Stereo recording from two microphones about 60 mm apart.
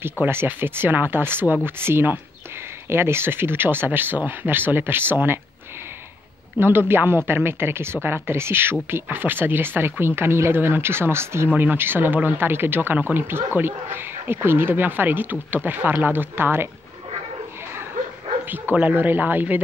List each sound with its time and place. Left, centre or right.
0.5 s speech: right
6.6 s speech: right
11.5 s speech: right
18.5 s speech: right